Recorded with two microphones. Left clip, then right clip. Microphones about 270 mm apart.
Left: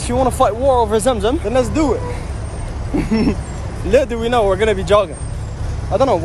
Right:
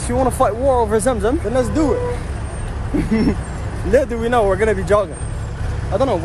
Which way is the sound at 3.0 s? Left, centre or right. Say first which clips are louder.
Left 1 dB; centre.